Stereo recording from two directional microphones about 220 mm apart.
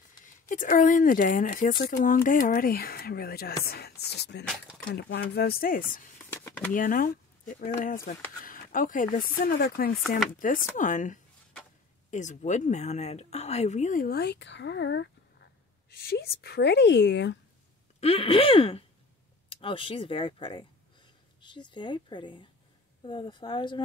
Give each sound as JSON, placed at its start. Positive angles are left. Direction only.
{"t": 0.2, "sound": "speech", "side_deg": 35}
{"t": 4.5, "sound": "speech", "side_deg": 0}
{"t": 4.8, "sound": "speech", "side_deg": 50}
{"t": 6.3, "sound": "speech", "side_deg": 10}
{"t": 6.7, "sound": "speech", "side_deg": 40}
{"t": 10.0, "sound": "speech", "side_deg": 0}
{"t": 10.4, "sound": "speech", "side_deg": 40}
{"t": 18.0, "sound": "speech", "side_deg": 25}